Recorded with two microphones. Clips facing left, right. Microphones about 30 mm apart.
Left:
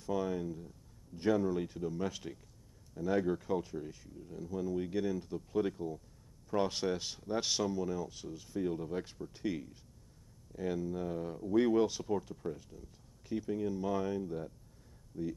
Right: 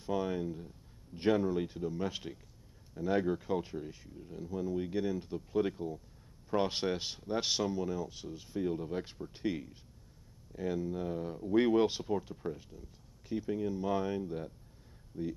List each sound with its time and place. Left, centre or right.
0.0 s a sound: right
1.4 s speech: centre
10.8 s speech: centre
11.4 s speech: right